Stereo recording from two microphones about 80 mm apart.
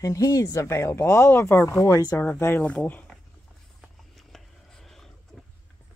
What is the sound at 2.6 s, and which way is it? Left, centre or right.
Speech, centre.